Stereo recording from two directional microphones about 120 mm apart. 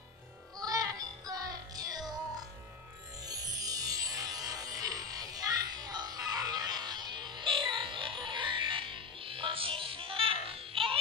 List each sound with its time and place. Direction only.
0.6 s child singing: 30° right (ahead or behind)
3.3 s music: 30° right (ahead or behind); by 11.0 s 50° right (ahead or behind)